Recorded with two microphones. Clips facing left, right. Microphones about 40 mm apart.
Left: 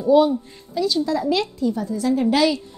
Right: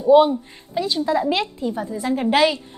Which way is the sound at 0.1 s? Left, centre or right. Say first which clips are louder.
Right 2 dB; right.